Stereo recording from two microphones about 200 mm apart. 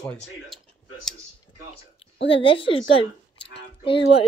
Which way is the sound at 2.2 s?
25° left (ahead or behind).